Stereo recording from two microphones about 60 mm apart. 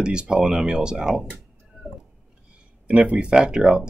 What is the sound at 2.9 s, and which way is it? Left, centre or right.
Speech, right.